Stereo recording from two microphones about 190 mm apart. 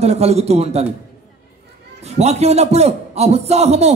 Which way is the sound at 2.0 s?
35° right (ahead or behind).